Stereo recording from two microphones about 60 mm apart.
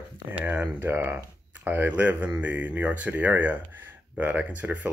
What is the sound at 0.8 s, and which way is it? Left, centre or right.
Speech, right.